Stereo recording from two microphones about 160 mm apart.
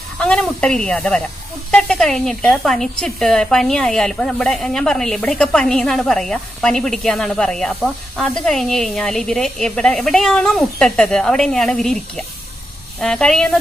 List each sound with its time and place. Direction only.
0.2 s speech: 5° left (ahead or behind)